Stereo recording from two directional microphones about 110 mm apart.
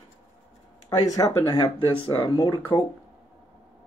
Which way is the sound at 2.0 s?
55° left (ahead or behind).